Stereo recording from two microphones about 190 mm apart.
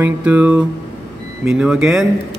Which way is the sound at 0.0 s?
10° right (ahead or behind).